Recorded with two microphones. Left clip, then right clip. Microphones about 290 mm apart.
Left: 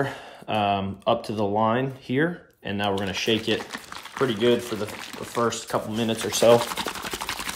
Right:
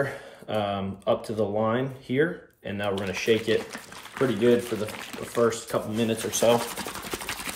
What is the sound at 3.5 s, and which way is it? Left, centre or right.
Speech, centre.